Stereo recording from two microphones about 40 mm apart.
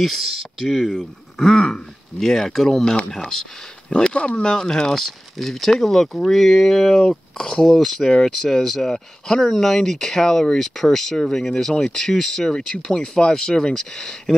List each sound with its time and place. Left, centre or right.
0.0 s speech: centre
3.9 s speech: left; by 7.0 s centre
7.0 s speech: centre